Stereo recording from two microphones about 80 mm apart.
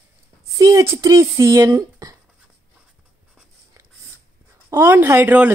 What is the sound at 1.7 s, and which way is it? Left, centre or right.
Speech, right.